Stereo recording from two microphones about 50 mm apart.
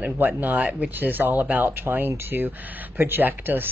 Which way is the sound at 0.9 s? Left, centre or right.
Right.